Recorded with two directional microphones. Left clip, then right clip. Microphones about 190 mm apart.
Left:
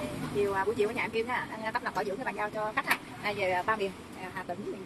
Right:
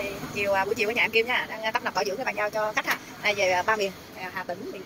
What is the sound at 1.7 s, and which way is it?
Speech, 10° right (ahead or behind).